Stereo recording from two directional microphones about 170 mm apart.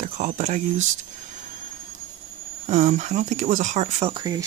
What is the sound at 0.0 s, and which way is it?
Speech, 45° right (ahead or behind).